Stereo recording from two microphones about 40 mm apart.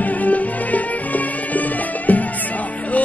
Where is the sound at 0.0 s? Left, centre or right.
Left.